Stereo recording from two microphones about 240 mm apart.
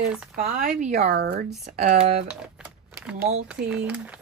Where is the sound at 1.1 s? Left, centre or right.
Right.